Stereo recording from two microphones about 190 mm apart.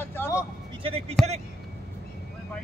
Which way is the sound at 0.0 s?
10° left (ahead or behind).